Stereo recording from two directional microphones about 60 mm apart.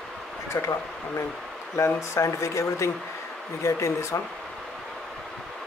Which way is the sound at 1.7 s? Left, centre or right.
Left.